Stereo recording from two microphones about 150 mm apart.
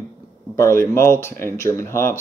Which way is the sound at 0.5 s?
20° left (ahead or behind).